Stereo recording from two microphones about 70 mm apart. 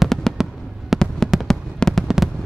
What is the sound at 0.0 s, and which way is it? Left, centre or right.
Fireworks, centre.